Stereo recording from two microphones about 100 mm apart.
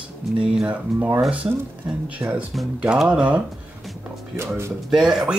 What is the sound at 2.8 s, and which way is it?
Speech, 10° right (ahead or behind).